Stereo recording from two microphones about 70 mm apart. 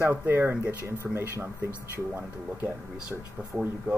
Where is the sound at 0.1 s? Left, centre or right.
Right.